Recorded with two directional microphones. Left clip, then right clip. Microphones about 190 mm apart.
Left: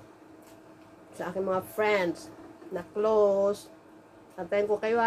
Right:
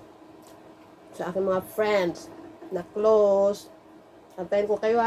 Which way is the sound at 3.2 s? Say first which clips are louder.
Right 1 dB; 25° left (ahead or behind).